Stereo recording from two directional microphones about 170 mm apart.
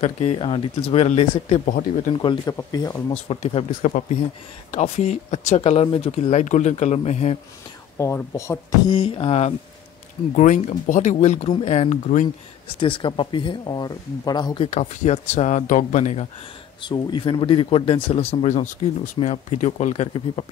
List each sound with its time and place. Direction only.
0.0 s speech: 35° left (ahead or behind)
2.2 s speech: 25° left (ahead or behind)
3.3 s speech: 35° left (ahead or behind)
8.0 s speech: 15° left (ahead or behind)
8.9 s speech: 30° left (ahead or behind)
10.3 s speech: 45° left (ahead or behind)
12.8 s speech: 30° left (ahead or behind)
14.7 s speech: 40° left (ahead or behind)
16.8 s speech: 25° left (ahead or behind); by 20.1 s 45° left (ahead or behind)